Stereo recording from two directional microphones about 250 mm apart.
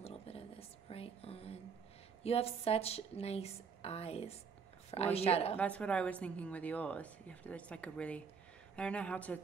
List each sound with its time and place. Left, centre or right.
0.0 s a sound: left
2.2 s a woman's voice: left
5.6 s a woman's voice: centre